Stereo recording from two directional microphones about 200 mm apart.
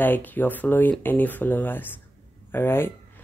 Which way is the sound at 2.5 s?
10° left (ahead or behind).